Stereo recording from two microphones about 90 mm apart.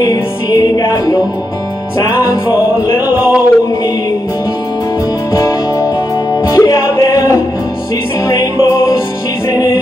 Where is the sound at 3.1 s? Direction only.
15° right (ahead or behind).